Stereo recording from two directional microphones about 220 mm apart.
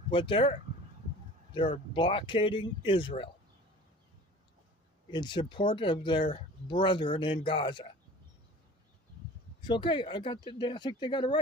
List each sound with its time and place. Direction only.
0.1 s speech: 25° left (ahead or behind)
5.1 s speech: 20° left (ahead or behind)
9.6 s speech: 20° left (ahead or behind)